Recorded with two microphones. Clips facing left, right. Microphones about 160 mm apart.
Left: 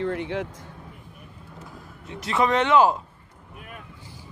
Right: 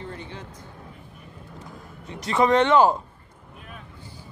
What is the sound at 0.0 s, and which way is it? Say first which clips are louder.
Speech: left 10 dB; 80° left.